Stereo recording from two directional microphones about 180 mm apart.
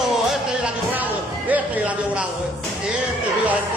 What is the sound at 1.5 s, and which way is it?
Speech, 5° right (ahead or behind).